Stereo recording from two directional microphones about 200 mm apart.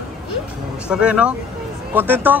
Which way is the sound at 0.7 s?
5° right (ahead or behind).